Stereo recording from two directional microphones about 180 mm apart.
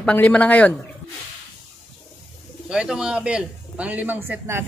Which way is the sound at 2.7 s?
5° right (ahead or behind).